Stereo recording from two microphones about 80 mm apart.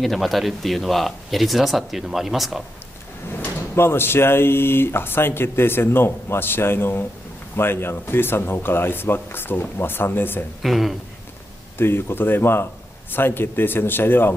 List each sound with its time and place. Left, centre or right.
0.0 s speech: centre
3.3 s speech: left
10.6 s speech: centre
11.8 s speech: left